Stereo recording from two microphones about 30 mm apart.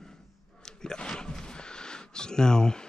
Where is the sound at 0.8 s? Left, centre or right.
Left.